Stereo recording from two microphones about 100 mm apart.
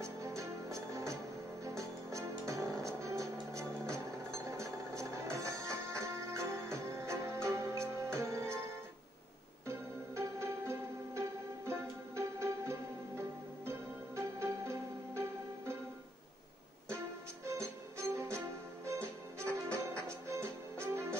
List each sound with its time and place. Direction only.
0.4 s music: 30° right (ahead or behind)
9.7 s music: 25° right (ahead or behind)
17.5 s music: 30° right (ahead or behind)